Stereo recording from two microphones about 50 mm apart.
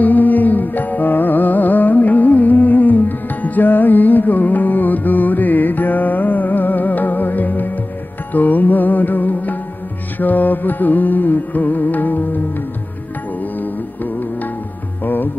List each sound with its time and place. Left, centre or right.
0.0 s music: left
13.6 s music: left